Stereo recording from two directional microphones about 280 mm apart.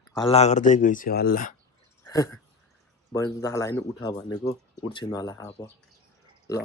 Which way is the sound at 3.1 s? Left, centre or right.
Centre.